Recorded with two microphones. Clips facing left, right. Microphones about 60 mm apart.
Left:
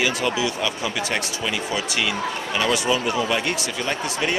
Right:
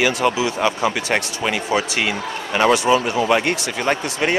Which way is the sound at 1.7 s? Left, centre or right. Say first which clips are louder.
Right 5 dB; right.